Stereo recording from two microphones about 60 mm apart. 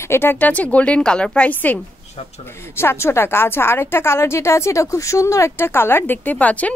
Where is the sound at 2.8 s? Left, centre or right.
Left.